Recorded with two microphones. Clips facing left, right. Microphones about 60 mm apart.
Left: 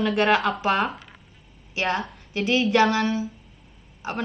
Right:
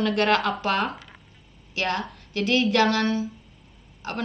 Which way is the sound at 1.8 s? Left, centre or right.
Left.